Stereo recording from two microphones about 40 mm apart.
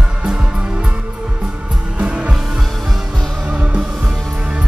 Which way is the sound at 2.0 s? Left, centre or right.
Right.